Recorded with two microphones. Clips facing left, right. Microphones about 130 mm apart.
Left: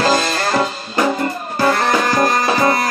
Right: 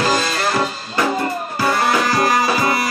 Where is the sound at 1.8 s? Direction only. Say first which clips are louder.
Left 1 dB; 5° right (ahead or behind).